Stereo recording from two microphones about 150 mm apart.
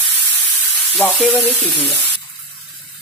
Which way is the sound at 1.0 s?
5° left (ahead or behind).